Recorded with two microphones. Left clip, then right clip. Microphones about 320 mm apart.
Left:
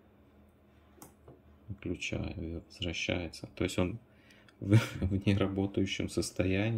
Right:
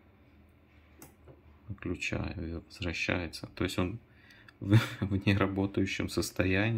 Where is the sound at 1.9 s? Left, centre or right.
Right.